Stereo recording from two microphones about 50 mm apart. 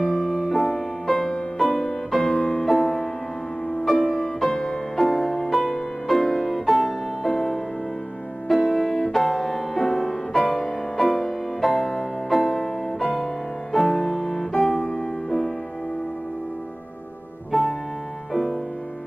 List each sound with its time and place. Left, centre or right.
0.1 s music: centre
17.5 s music: centre